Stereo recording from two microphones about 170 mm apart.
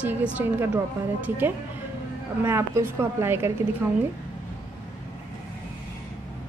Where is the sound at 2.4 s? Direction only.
15° right (ahead or behind).